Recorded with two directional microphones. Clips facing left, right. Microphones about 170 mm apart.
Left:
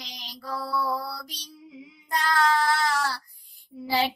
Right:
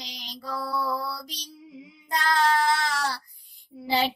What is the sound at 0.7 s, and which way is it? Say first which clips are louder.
Mantra: left 1 dB; 20° right (ahead or behind).